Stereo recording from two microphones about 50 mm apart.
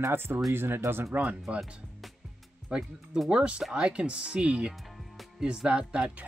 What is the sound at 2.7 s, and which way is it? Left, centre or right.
Speech, centre.